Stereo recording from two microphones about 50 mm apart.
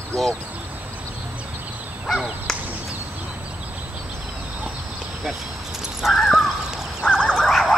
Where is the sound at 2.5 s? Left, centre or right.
Centre.